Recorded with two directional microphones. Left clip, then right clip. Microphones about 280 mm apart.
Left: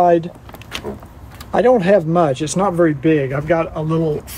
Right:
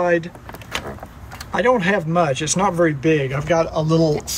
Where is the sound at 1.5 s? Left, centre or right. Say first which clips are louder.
Left 5 dB; centre.